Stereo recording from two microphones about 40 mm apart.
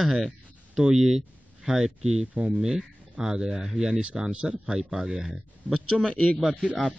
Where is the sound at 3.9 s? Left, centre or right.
Right.